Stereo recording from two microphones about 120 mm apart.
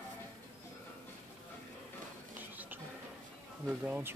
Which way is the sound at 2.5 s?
15° right (ahead or behind).